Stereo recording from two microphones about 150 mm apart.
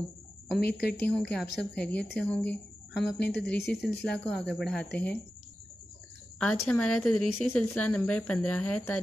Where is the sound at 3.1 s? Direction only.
90° left.